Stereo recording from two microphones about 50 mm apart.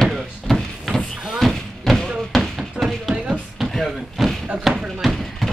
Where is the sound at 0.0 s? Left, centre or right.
Centre.